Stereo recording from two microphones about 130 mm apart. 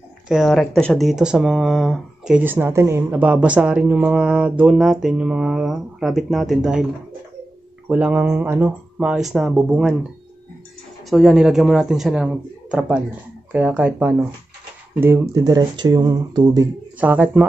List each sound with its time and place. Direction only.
0.3 s speech: centre (ahead or behind)
2.4 s speech: 15° right (ahead or behind)
7.9 s speech: 10° right (ahead or behind)
11.1 s speech: centre (ahead or behind)
15.3 s speech: 30° right (ahead or behind)
17.0 s speech: 10° right (ahead or behind)